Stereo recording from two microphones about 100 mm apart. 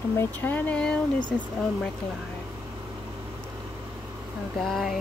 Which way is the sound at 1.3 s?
Centre (ahead or behind).